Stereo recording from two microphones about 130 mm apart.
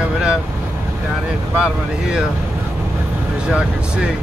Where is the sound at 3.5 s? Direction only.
10° right (ahead or behind).